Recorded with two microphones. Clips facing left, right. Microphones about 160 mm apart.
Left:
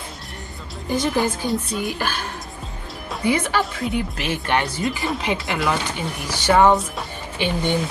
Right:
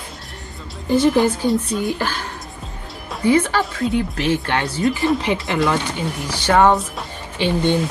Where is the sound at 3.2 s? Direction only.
15° left (ahead or behind).